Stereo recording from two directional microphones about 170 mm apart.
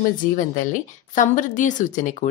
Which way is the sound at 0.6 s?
50° left (ahead or behind).